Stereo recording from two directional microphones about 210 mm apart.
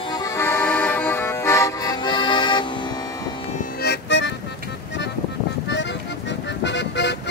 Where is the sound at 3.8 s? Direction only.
55° left (ahead or behind).